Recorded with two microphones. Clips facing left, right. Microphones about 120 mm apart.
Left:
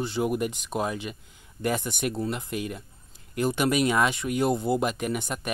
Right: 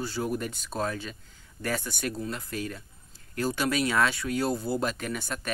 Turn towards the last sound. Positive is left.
turn(degrees=15)  # may be behind; listen again after turning